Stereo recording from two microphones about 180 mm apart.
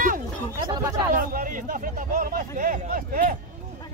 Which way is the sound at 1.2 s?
50° right (ahead or behind).